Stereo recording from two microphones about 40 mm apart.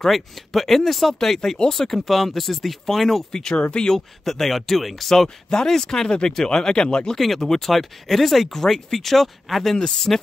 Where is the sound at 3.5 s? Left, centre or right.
Left.